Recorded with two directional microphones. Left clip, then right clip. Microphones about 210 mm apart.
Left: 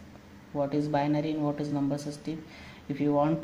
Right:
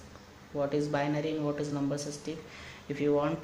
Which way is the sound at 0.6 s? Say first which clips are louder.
Left 2 dB; 20° left (ahead or behind).